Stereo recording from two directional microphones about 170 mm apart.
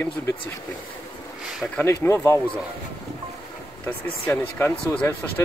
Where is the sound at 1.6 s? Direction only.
10° left (ahead or behind).